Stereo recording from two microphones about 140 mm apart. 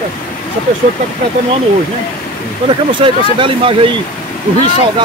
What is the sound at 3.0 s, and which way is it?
Speech, 40° right (ahead or behind).